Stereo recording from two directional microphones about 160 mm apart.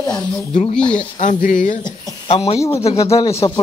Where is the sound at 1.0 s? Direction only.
50° left (ahead or behind).